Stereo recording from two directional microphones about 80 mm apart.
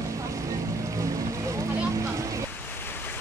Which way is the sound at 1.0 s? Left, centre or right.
Right.